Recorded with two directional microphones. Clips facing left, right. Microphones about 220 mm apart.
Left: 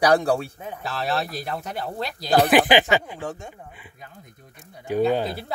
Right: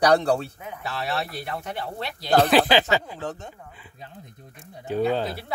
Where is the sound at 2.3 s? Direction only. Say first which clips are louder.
Left 1 dB; 15° left (ahead or behind).